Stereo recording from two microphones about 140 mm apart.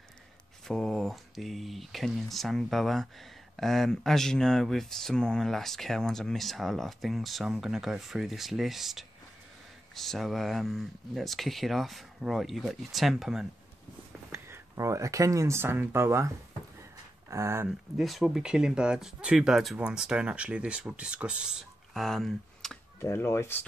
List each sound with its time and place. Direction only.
0.7 s speech: 5° left (ahead or behind)
14.3 s speech: 20° right (ahead or behind)
17.6 s speech: centre (ahead or behind)
22.9 s speech: 20° left (ahead or behind)